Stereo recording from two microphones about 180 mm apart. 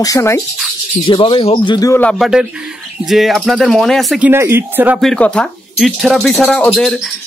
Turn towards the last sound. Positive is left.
turn(degrees=0)  # may be behind; listen again after turning